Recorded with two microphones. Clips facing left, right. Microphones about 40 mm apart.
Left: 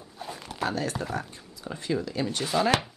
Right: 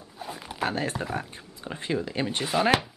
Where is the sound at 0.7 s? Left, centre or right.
Right.